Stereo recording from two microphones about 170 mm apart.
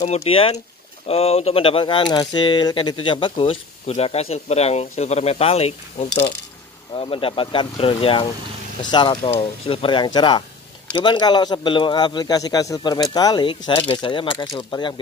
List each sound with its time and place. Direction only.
0.0 s speech: 40° left (ahead or behind)